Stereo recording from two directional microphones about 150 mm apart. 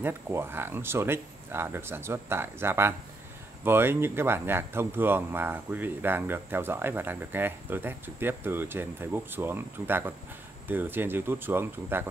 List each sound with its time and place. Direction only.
0.0 s speech: 15° right (ahead or behind)